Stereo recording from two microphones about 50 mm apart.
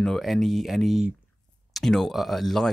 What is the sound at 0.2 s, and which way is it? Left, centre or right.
Speech, centre.